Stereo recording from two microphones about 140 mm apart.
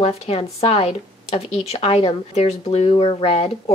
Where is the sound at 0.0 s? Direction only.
45° left (ahead or behind).